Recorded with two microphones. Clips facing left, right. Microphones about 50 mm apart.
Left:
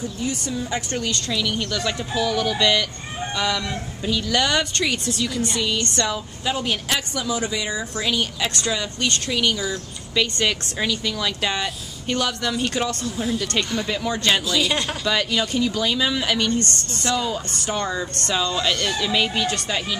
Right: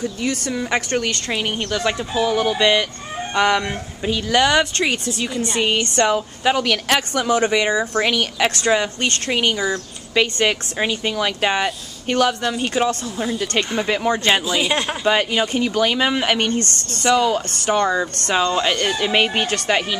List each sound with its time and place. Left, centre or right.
0.0 s speech: right
3.3 s speech: right
14.2 s speech: right
15.0 s speech: right